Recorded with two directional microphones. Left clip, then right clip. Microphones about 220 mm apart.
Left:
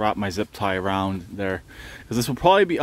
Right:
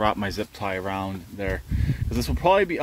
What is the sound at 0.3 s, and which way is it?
Speech, 25° left (ahead or behind).